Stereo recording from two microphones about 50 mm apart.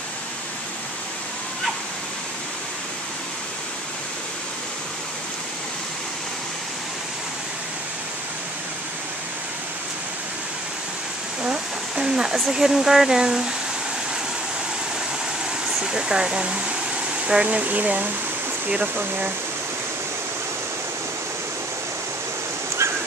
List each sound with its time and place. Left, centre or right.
12.0 s speech: centre
15.8 s speech: centre; by 18.1 s right
18.8 s speech: right